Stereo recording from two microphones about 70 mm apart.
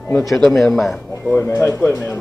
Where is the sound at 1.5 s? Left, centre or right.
Left.